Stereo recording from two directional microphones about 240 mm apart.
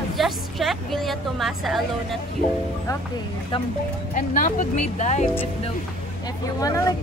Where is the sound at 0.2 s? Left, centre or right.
Centre.